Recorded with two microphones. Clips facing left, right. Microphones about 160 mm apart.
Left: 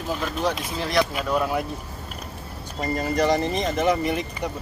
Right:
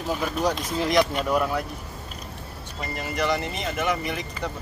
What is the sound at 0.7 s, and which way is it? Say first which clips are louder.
Speech: right 3 dB; 15° right (ahead or behind).